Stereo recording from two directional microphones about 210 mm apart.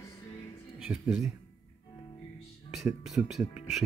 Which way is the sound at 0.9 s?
Centre (ahead or behind).